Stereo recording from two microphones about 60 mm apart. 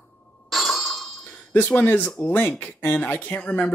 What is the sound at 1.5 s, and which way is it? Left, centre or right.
Speech, left.